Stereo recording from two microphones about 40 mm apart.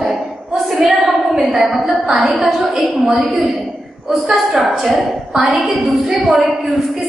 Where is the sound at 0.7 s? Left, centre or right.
Centre.